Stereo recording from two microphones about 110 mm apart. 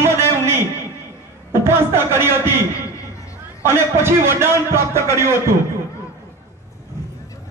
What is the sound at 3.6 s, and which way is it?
A man's voice, 20° right (ahead or behind).